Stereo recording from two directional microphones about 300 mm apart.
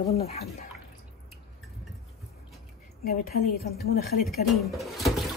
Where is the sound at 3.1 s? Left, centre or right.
Left.